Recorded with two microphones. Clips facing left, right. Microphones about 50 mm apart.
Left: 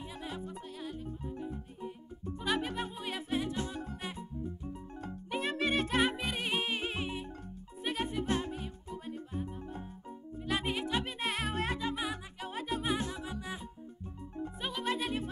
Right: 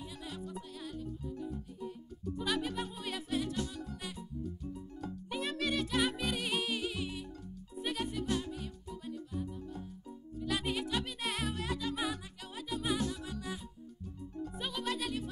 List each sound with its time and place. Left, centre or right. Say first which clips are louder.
0.1 s music: left 2 dB; left